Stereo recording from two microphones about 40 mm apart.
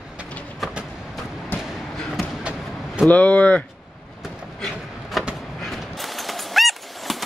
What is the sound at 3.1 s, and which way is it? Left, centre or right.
Speech, left.